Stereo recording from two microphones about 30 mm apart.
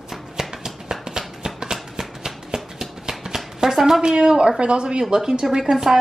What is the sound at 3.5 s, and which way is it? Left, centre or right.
Chopping, centre.